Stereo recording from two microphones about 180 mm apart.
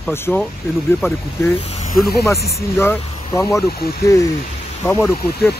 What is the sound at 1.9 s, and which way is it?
Speech, 55° left (ahead or behind).